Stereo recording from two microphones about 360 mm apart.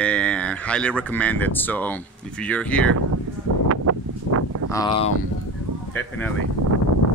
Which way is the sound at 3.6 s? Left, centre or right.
Right.